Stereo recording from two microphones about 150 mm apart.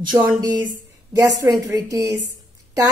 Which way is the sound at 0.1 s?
20° right (ahead or behind).